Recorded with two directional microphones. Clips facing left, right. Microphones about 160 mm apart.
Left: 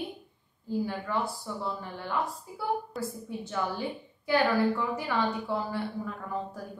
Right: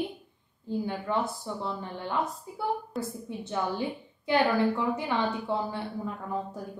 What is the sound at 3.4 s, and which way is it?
A woman's voice, 20° right (ahead or behind).